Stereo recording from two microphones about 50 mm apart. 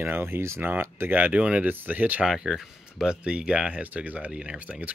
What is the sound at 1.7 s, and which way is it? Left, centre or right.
Speech, right.